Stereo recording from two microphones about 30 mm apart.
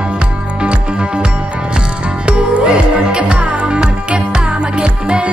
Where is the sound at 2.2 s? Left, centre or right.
Right.